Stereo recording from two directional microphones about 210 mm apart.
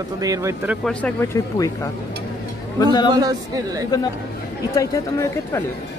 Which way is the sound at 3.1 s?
15° right (ahead or behind).